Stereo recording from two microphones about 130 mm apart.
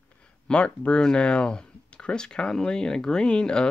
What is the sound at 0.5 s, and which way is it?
Speech, 10° left (ahead or behind).